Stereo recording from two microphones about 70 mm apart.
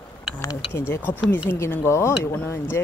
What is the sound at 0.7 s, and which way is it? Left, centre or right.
Speech, left.